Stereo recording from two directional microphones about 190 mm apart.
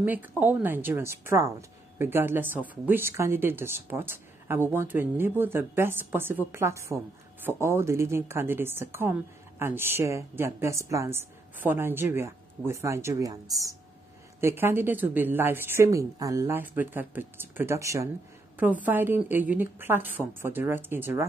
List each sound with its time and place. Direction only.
0.0 s a woman's voice: 10° right (ahead or behind)